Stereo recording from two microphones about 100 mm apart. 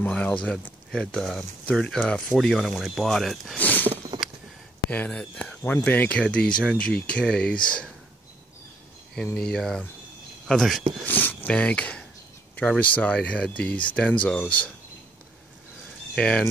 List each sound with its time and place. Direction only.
0.0 s speech: 15° left (ahead or behind)
3.5 s a sound: 15° left (ahead or behind)
4.1 s a sound: 45° right (ahead or behind)
4.9 s speech: 15° left (ahead or behind)
9.1 s speech: 5° left (ahead or behind)
11.1 s speech: 20° left (ahead or behind)
16.2 s speech: 10° left (ahead or behind)